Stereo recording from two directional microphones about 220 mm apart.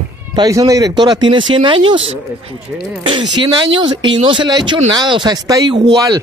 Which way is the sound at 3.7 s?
20° right (ahead or behind).